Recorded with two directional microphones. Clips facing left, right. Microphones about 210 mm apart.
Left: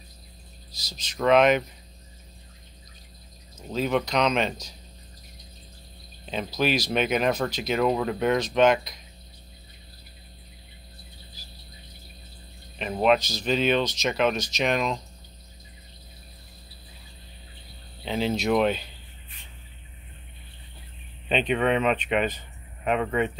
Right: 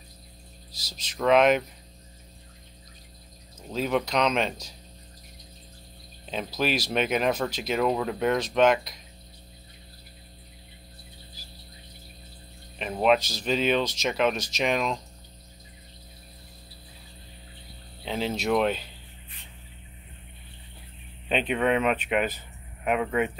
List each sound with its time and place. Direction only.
0.8 s speech: 5° right (ahead or behind)
3.7 s speech: centre (ahead or behind)
6.3 s speech: centre (ahead or behind)
12.7 s speech: centre (ahead or behind)
18.0 s speech: centre (ahead or behind)
21.3 s speech: 5° right (ahead or behind)